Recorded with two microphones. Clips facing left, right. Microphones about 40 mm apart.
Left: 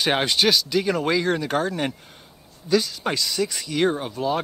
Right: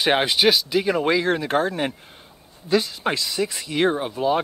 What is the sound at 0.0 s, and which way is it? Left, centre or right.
Speech, centre.